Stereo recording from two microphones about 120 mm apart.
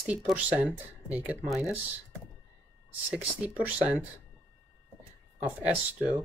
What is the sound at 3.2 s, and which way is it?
Speech, 10° right (ahead or behind).